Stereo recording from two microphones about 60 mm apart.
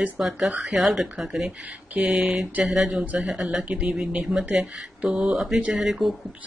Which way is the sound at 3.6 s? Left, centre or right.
Right.